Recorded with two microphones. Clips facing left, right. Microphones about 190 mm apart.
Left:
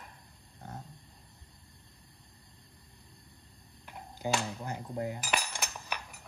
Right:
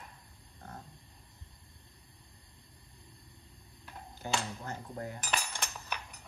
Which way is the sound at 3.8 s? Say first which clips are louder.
Left 6 dB; 15° left (ahead or behind).